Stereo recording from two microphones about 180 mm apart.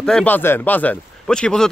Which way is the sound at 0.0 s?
5° left (ahead or behind).